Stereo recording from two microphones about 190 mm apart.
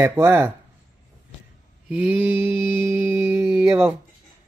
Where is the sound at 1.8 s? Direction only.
5° right (ahead or behind).